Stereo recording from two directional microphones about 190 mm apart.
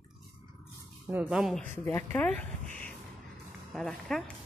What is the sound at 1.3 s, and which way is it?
Speech, centre (ahead or behind).